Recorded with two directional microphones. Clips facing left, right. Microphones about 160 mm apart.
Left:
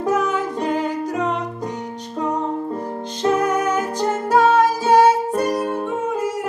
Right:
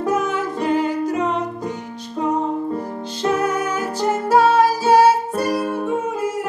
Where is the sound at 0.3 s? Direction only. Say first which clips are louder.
Right 1 dB; 15° left (ahead or behind).